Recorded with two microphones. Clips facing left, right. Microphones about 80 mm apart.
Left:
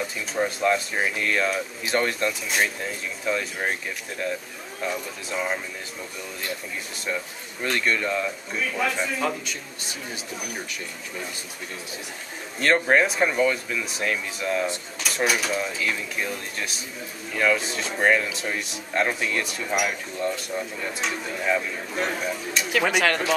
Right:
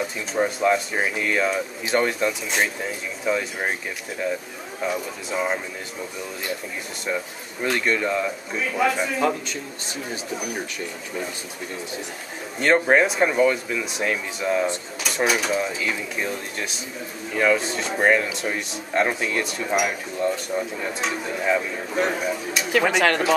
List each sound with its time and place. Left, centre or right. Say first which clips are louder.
0.0 s speech: right 3 dB; centre
4.8 s speech: right 3 dB; centre
7.6 s speech: right 2 dB; centre
12.5 s speech: right 2 dB; centre
22.8 s speech: right 2 dB; right